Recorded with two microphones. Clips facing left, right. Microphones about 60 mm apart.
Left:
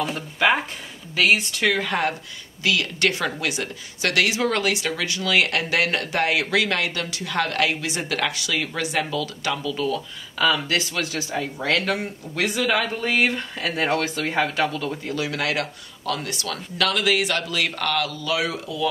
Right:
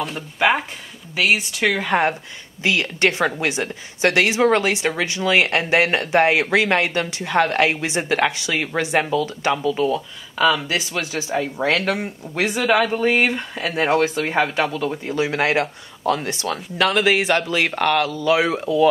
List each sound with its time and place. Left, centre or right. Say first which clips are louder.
1.1 s speech: even; centre
1.9 s a woman's voice: right 5 dB; right